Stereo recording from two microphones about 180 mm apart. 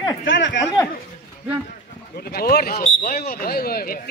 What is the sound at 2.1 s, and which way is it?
Speech, 60° left (ahead or behind).